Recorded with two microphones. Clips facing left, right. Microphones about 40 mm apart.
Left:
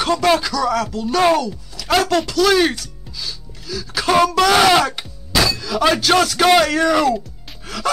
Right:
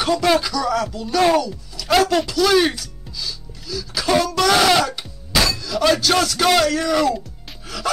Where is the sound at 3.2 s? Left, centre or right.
Centre.